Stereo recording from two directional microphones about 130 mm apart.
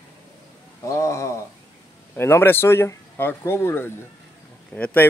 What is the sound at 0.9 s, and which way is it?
A man's voice, 20° left (ahead or behind).